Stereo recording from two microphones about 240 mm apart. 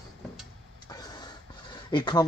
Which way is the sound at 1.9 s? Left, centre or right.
Centre.